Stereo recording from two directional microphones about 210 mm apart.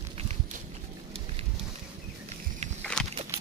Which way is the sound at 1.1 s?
30° right (ahead or behind).